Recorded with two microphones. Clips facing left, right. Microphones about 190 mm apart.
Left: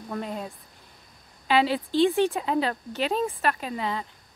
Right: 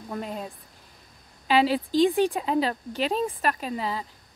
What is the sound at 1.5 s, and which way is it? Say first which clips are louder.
Speech: right 1 dB; 40° right (ahead or behind).